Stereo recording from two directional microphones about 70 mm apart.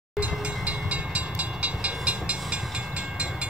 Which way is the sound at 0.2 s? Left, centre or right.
Centre.